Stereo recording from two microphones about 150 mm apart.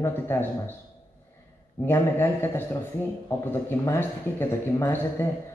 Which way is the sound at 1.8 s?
15° left (ahead or behind).